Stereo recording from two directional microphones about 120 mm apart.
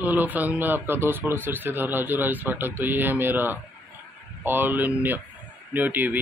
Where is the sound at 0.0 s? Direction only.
15° right (ahead or behind).